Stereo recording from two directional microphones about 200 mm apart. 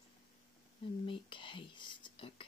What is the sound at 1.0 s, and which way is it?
Whispering, 25° left (ahead or behind).